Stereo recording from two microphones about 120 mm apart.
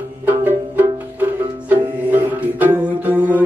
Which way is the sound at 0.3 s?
15° right (ahead or behind).